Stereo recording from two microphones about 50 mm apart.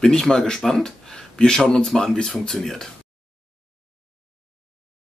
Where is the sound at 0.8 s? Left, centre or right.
Centre.